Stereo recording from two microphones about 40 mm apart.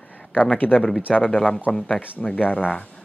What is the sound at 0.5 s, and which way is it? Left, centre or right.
Speech, left.